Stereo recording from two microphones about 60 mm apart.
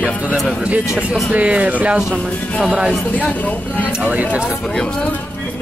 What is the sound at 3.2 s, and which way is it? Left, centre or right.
Speech, left.